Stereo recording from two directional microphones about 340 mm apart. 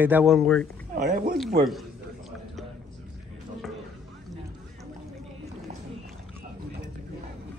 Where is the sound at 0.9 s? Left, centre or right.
Right.